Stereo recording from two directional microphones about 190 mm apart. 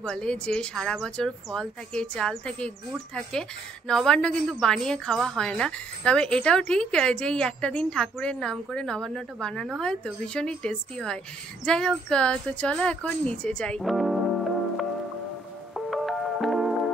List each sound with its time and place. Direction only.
0.0 s a woman's voice: 5° left (ahead or behind)
15.7 s music: centre (ahead or behind)